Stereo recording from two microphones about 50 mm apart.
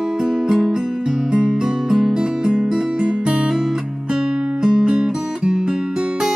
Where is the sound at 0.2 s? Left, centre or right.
Centre.